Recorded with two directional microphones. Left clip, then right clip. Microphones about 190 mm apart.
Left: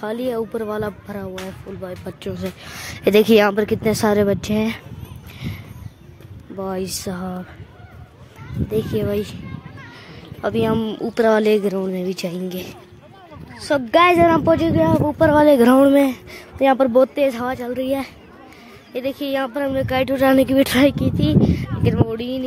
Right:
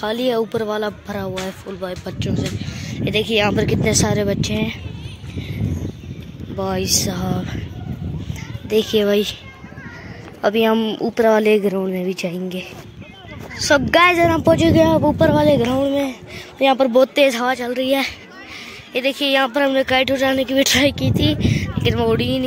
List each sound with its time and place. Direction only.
0.2 s speech: centre (ahead or behind)
2.7 s speech: 40° left (ahead or behind)
3.6 s speech: 20° left (ahead or behind)
6.6 s speech: 10° left (ahead or behind)
8.6 s speech: centre (ahead or behind)
10.4 s speech: 5° left (ahead or behind)
13.8 s speech: 10° right (ahead or behind)
15.3 s speech: 20° left (ahead or behind)
15.6 s speech: 35° left (ahead or behind)
16.5 s speech: 15° left (ahead or behind)
20.2 s speech: 25° left (ahead or behind)
21.8 s speech: centre (ahead or behind)